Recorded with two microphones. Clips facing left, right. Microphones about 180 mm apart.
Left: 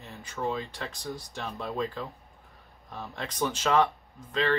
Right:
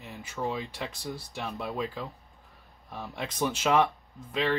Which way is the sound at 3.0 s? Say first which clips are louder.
Even; 10° right (ahead or behind).